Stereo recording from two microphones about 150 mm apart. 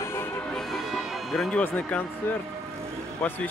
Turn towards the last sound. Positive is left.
turn(degrees=10)  # may be behind; listen again after turning